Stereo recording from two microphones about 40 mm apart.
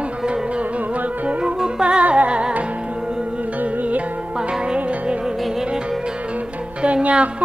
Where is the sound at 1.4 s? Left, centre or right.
Right.